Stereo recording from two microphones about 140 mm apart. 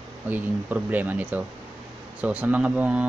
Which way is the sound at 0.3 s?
15° right (ahead or behind).